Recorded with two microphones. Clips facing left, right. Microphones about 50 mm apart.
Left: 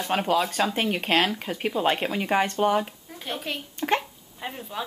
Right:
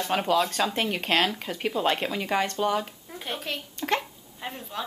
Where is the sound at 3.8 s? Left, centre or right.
Centre.